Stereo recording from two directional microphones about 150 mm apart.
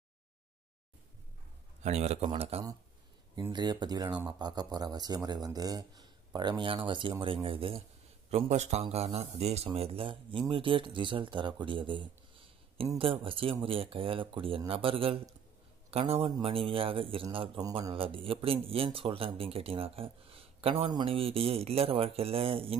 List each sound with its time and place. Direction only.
1.8 s speech: 45° right (ahead or behind)
3.5 s a man's voice: 25° right (ahead or behind)